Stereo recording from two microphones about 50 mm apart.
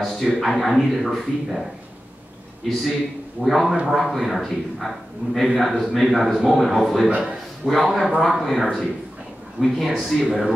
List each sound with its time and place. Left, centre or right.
0.0 s a man's voice: centre
7.1 s a man's voice: right
7.8 s a man's voice: centre